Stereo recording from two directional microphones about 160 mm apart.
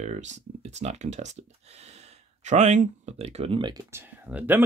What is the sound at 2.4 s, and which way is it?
Speech, 50° right (ahead or behind).